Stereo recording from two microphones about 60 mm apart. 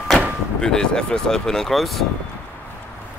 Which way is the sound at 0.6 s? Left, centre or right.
Centre.